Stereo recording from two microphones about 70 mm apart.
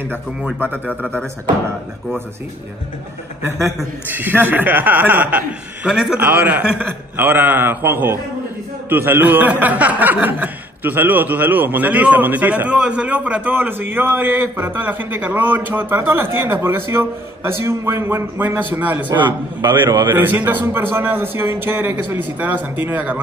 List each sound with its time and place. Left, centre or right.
0.8 s a man's voice: left
4.1 s a man's voice: right
5.9 s a man's voice: centre
6.1 s a man's voice: right
6.5 s a man's voice: centre
7.2 s a man's voice: right
19.2 s a man's voice: right
20.2 s a man's voice: right